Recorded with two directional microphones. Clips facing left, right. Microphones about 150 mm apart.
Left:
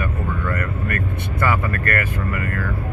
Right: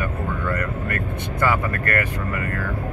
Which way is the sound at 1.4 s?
20° right (ahead or behind).